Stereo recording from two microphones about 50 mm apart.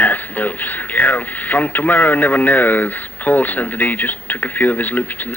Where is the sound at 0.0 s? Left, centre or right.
Left.